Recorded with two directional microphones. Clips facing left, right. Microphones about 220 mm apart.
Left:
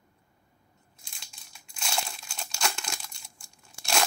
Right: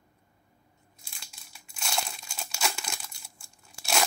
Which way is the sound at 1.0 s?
5° right (ahead or behind).